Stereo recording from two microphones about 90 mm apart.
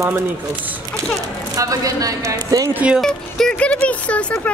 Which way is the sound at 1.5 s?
40° right (ahead or behind).